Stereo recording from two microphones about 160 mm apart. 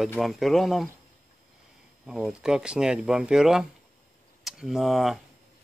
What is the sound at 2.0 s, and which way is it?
Speech, 5° right (ahead or behind).